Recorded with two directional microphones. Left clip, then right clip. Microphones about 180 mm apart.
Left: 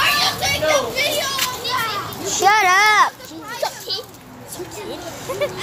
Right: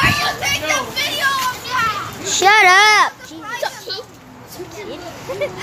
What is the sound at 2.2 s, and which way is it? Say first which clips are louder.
Speech: right 3 dB; 25° right (ahead or behind).